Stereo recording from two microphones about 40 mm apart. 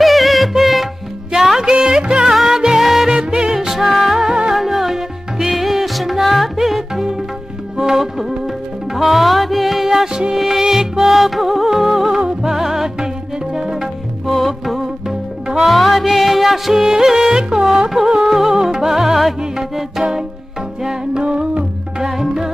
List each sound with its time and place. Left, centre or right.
0.0 s music: centre
2.2 s music: centre
4.2 s music: centre
4.5 s music: centre
14.2 s music: centre
21.2 s humming: right
22.0 s music: centre